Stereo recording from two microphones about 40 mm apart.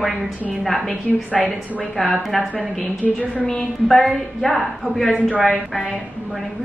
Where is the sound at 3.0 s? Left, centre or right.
Left.